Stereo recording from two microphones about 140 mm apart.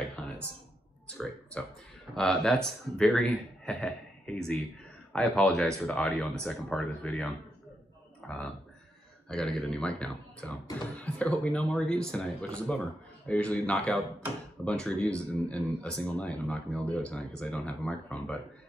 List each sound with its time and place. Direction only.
1.0 s a sound: 5° left (ahead or behind)
2.1 s speech: 5° left (ahead or behind)
9.3 s speech: 5° left (ahead or behind)